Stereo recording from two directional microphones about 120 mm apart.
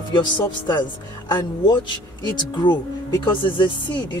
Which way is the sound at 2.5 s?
40° left (ahead or behind).